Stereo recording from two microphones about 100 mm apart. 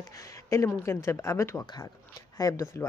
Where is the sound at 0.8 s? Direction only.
30° left (ahead or behind).